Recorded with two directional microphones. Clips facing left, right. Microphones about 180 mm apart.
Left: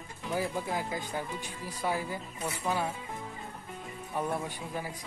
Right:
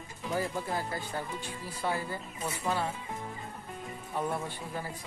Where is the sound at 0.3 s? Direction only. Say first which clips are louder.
Even; 10° left (ahead or behind).